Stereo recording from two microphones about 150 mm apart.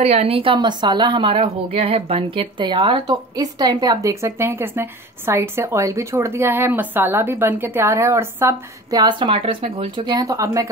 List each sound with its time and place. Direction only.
0.0 s a woman's voice: 45° right (ahead or behind); by 9.0 s 15° right (ahead or behind)
9.0 s speech: 35° right (ahead or behind)